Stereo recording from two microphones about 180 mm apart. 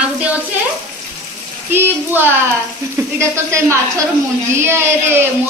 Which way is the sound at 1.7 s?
10° right (ahead or behind).